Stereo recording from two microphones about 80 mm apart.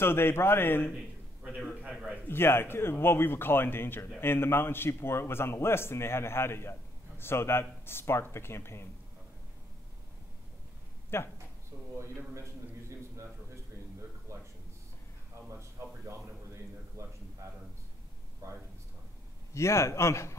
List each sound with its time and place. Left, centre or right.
0.0 s speech: left
0.9 s a sound: centre
1.9 s a man's voice: centre
2.2 s speech: left
11.1 s speech: left
17.0 s a sound: right
19.5 s speech: left